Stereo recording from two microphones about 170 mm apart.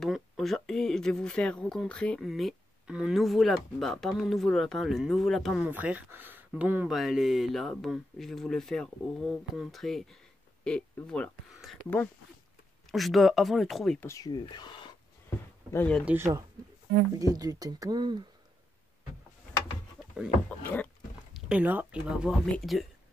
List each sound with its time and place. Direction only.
0.0 s speech: centre (ahead or behind)
5.7 s speech: 10° right (ahead or behind)
14.0 s speech: 20° left (ahead or behind)
15.2 s a sound: 10° left (ahead or behind)
16.1 s speech: 15° right (ahead or behind)
20.4 s speech: 10° left (ahead or behind)
21.3 s speech: 5° right (ahead or behind)